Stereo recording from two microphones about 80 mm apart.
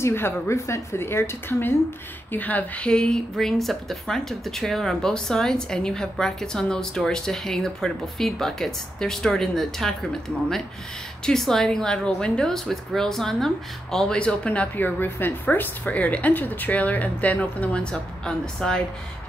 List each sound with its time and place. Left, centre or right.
0.0 s a woman's voice: left; by 9.9 s centre
11.2 s a woman's voice: centre